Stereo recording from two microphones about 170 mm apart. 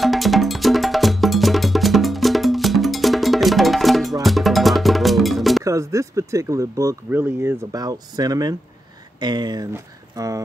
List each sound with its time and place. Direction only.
0.0 s music: centre (ahead or behind)
5.6 s speech: 20° right (ahead or behind)